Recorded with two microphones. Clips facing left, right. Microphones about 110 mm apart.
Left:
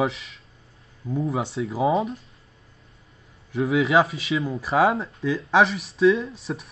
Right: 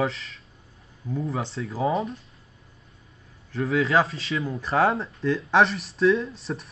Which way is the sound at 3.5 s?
5° left (ahead or behind).